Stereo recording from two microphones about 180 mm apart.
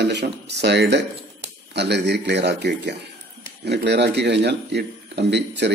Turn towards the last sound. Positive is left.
turn(degrees=-70)  # may be behind; listen again after turning